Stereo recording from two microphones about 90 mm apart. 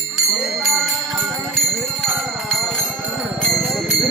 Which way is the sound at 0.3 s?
Centre (ahead or behind).